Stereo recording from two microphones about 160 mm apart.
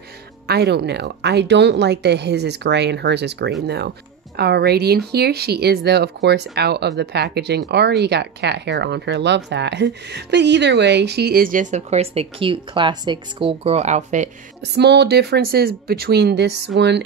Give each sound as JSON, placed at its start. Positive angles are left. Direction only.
{"t": 0.5, "sound": "speech", "side_deg": -90}
{"t": 14.6, "sound": "speech", "side_deg": -90}